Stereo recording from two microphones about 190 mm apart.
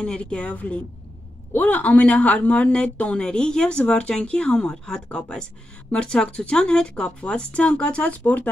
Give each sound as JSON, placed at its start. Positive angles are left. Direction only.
{"t": 0.0, "sound": "speech", "side_deg": 5}